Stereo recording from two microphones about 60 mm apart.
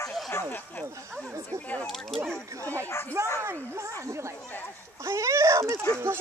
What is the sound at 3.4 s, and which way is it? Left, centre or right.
Speech, right.